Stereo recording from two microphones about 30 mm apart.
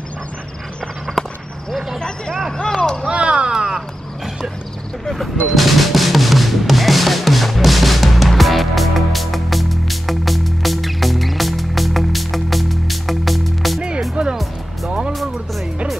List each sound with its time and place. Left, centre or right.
1.2 s a sound: centre
2.0 s speech: left
2.7 s speech: centre
3.1 s vehicle: right
3.5 s crow: right
5.5 s music: centre